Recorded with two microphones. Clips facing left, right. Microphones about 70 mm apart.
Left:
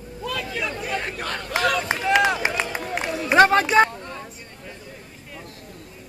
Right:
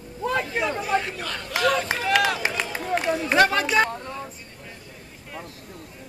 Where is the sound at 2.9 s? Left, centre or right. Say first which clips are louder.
Right 1 dB; centre.